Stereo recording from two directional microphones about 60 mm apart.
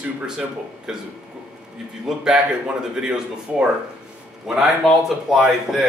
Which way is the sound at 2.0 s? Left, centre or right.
Centre.